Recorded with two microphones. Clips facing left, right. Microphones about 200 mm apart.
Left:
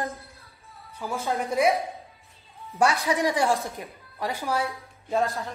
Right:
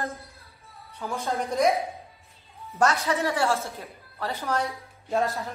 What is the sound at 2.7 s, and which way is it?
A woman's voice, 10° left (ahead or behind).